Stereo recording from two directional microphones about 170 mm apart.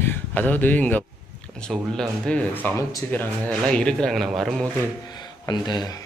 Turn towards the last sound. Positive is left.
turn(degrees=25)  # may be behind; listen again after turning